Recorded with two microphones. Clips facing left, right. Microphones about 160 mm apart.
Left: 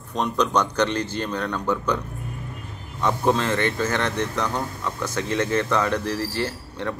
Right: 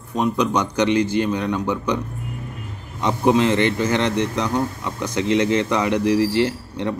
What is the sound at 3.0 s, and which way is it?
A man's voice, 15° right (ahead or behind).